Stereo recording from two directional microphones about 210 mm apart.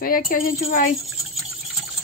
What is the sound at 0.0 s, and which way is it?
Speech, 45° left (ahead or behind).